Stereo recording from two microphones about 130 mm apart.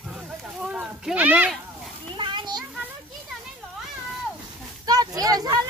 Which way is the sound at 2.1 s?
35° right (ahead or behind).